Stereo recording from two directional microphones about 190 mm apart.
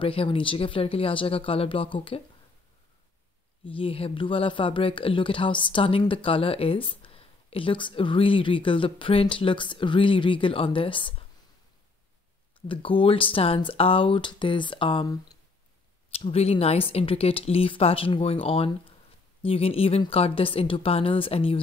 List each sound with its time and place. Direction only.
0.0 s speech: 30° left (ahead or behind)
3.7 s speech: 30° left (ahead or behind)
12.5 s speech: 25° left (ahead or behind)